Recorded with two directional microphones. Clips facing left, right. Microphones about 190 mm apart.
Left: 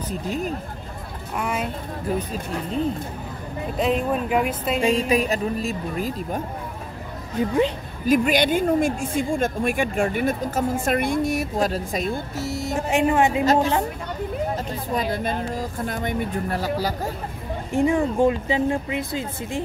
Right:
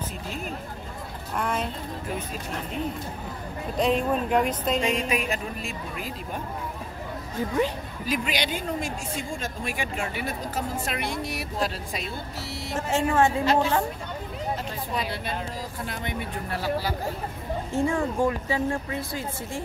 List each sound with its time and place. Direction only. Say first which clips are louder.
0.1 s speech: left 8 dB; 40° left (ahead or behind)
1.3 s a woman's voice: left 2 dB; 10° left (ahead or behind)
3.7 s speech: left 1 dB; 5° left (ahead or behind)
4.8 s speech: left 6 dB; 35° left (ahead or behind)
7.3 s speech: left 5 dB; 20° left (ahead or behind)
8.1 s speech: left 10 dB; 50° left (ahead or behind)
12.7 s a woman's voice: left 3 dB; 15° left (ahead or behind)
15.0 s speech: left 7 dB; 45° left (ahead or behind)
17.7 s speech: left 5 dB; 20° left (ahead or behind)